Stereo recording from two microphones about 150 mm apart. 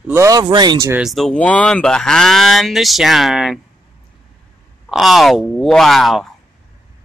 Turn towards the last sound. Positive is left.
turn(degrees=0)  # may be behind; listen again after turning